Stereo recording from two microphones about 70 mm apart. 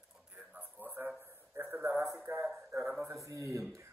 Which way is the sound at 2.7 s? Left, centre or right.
Right.